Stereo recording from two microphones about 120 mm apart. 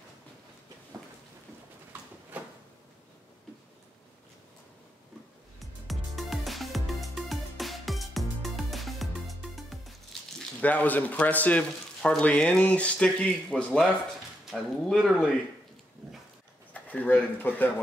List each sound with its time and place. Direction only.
2.3 s a sound: 10° right (ahead or behind)
5.6 s music: centre (ahead or behind)
10.6 s speech: 15° left (ahead or behind)
16.7 s speech: 15° left (ahead or behind)